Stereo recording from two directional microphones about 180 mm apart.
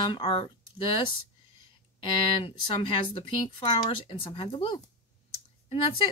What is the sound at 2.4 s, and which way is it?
Speech, 30° left (ahead or behind).